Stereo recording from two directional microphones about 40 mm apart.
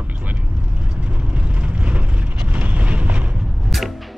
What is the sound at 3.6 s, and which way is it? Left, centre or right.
Music, centre.